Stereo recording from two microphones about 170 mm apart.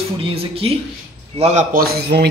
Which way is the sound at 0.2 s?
35° right (ahead or behind).